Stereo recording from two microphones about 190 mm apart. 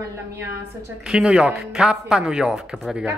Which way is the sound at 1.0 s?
5° right (ahead or behind).